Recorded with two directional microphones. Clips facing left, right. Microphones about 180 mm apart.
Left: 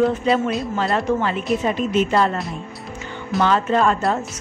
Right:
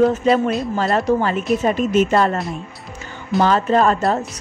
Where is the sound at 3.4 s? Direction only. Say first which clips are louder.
Right 2 dB; 40° right (ahead or behind).